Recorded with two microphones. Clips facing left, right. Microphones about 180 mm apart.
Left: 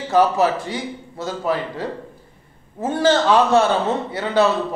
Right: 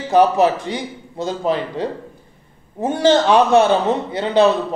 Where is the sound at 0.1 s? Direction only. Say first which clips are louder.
Right 3 dB; 15° right (ahead or behind).